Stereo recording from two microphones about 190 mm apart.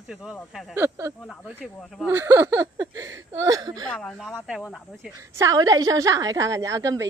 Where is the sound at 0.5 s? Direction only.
Centre (ahead or behind).